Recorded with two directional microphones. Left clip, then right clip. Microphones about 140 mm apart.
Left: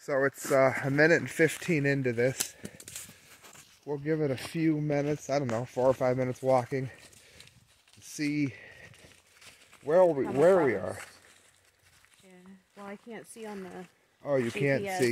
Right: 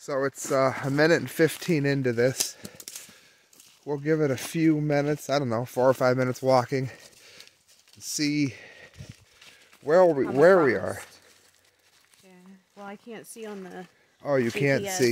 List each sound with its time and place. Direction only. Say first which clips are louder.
0.0 s speech: even; 10° right (ahead or behind)
0.7 s speech: right 2 dB; 25° right (ahead or behind)
1.7 s speech: right 3 dB; 50° right (ahead or behind)
3.8 s speech: right 5 dB; 75° right (ahead or behind)
8.0 s speech: right 5 dB; 65° right (ahead or behind)
9.8 s speech: right 4 dB; 60° right (ahead or behind)
14.2 s speech: right 4 dB; 60° right (ahead or behind)